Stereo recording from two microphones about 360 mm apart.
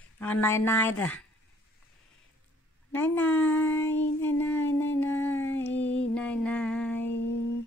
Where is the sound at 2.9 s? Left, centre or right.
Centre.